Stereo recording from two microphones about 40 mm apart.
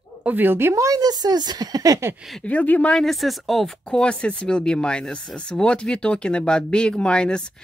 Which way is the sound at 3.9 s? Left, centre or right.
Left.